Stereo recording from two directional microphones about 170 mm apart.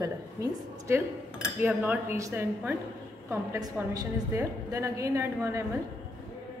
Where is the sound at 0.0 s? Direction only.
20° right (ahead or behind).